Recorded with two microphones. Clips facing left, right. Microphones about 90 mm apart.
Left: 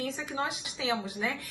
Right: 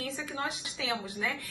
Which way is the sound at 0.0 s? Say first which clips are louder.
Left 2 dB; 15° left (ahead or behind).